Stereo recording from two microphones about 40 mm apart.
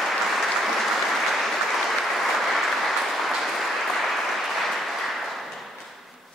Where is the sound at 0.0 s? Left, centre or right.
Centre.